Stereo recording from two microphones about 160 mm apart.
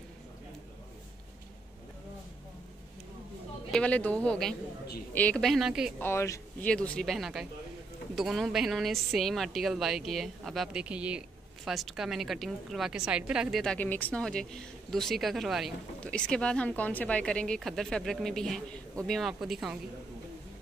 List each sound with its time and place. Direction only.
3.7 s speech: 10° left (ahead or behind)
5.9 s speech: 15° left (ahead or behind)
6.6 s speech: 5° left (ahead or behind)